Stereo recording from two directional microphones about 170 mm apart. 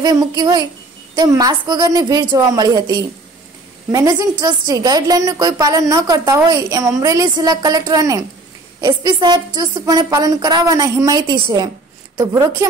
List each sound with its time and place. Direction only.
0.0 s a woman's voice: 20° right (ahead or behind)